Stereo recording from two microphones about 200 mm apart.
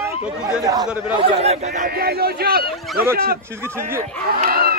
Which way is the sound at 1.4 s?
30° right (ahead or behind).